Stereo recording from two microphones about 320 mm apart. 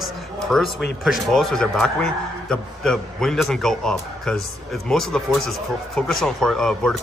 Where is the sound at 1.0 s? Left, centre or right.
Centre.